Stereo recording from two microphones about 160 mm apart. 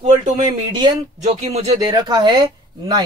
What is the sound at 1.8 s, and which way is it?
Speech, 25° right (ahead or behind).